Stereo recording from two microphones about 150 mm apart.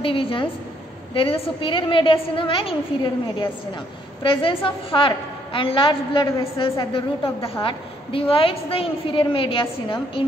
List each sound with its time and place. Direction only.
0.0 s a woman's voice: 35° left (ahead or behind)